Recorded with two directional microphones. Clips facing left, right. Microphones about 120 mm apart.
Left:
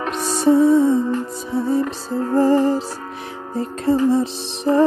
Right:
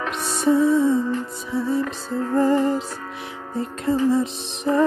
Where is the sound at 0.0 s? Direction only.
40° left (ahead or behind).